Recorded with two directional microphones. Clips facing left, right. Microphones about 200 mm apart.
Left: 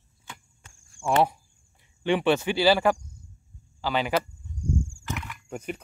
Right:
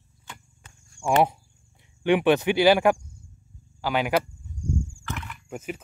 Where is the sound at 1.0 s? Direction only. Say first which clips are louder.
Right 2 dB; 15° right (ahead or behind).